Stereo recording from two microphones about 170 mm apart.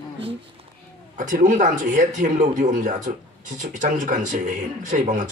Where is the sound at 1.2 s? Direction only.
50° right (ahead or behind).